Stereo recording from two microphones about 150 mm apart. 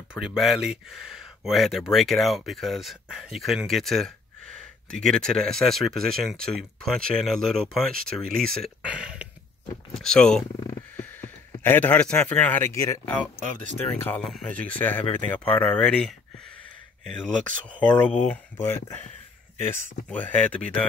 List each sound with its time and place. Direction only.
0.1 s speech: 5° right (ahead or behind)
8.8 s a sound: 5° right (ahead or behind)
9.9 s speech: 5° left (ahead or behind)
10.7 s a sound: 15° left (ahead or behind)
13.0 s speech: 10° left (ahead or behind)
17.6 s speech: 10° left (ahead or behind)